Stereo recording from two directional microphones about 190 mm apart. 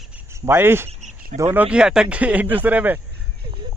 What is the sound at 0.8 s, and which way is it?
Cricket, 40° right (ahead or behind).